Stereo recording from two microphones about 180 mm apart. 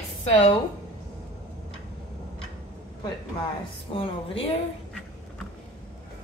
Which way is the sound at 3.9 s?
30° left (ahead or behind).